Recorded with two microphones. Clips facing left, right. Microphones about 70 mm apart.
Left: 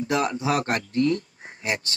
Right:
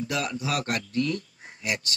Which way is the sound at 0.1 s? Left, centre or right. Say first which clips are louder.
Left 7 dB; left.